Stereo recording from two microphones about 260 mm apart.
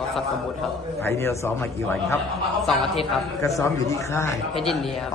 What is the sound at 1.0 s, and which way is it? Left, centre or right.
A man's voice, centre.